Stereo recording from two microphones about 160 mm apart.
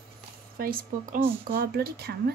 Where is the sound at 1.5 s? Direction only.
75° right (ahead or behind).